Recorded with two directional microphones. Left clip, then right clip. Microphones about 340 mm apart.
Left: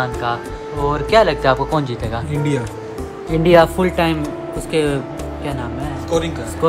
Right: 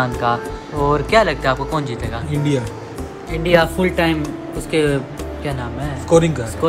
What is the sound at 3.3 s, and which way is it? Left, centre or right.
Speech, left.